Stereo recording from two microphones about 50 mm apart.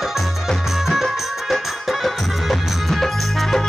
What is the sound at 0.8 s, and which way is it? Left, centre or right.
Music, centre.